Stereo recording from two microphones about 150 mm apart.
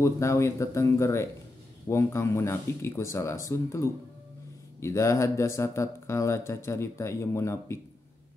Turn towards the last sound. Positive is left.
turn(degrees=20)  # may be behind; listen again after turning